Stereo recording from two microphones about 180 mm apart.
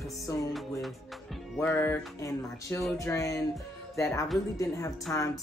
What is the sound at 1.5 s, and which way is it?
Speech, 10° left (ahead or behind).